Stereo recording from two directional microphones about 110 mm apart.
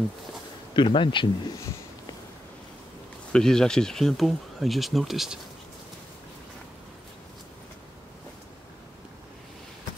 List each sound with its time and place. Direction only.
0.7 s speech: 50° left (ahead or behind)
3.3 s speech: 5° left (ahead or behind)